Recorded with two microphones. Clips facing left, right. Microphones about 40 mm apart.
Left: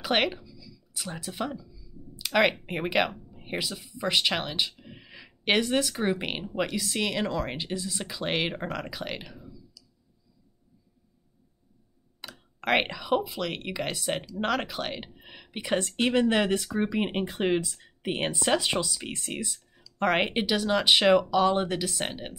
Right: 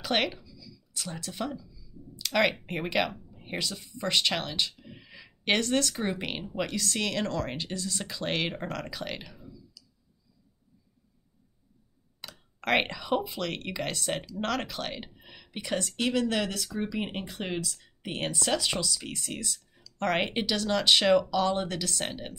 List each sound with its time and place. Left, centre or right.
0.0 s a sound: centre
2.6 s speech: centre
12.2 s a woman's voice: centre; by 19.4 s left
19.4 s speech: centre